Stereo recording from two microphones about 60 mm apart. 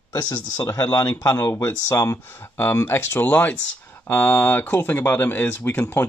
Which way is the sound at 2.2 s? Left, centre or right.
Left.